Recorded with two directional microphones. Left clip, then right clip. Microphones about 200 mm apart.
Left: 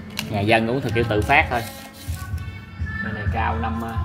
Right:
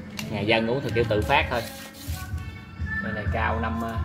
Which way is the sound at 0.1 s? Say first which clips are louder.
Left 5 dB; 40° left (ahead or behind).